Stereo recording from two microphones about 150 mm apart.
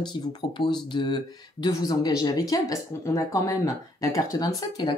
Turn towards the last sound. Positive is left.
turn(degrees=30)  # may be behind; listen again after turning